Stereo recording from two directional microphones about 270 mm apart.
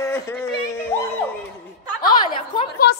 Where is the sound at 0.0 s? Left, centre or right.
Centre.